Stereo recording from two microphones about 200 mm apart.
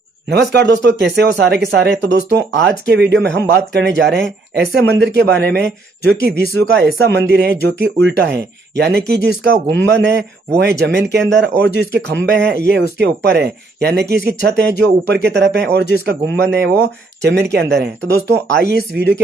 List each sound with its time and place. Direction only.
0.3 s speech: 55° right (ahead or behind)